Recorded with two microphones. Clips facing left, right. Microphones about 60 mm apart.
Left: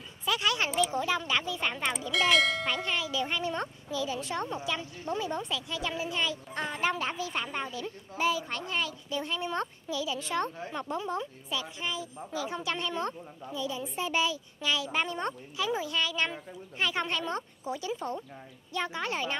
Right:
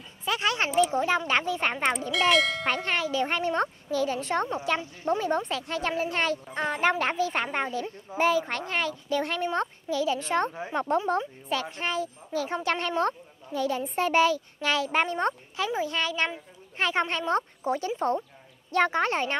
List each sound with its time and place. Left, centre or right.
0.2 s a sound: right
0.7 s speech: right
2.0 s speech: centre
2.6 s speech: right
6.5 s speech: right
9.4 s speech: right
10.9 s speech: right
13.0 s speech: right